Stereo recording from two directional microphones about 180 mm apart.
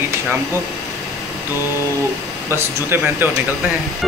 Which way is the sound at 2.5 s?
15° right (ahead or behind).